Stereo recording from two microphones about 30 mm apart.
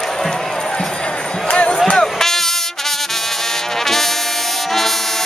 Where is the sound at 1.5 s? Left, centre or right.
Left.